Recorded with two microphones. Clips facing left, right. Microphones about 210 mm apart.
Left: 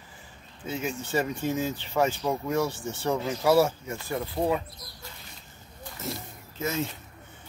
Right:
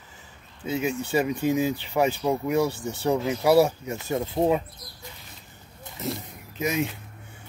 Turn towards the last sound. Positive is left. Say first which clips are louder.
# right 4 dB
turn(degrees=-15)  # may be behind; listen again after turning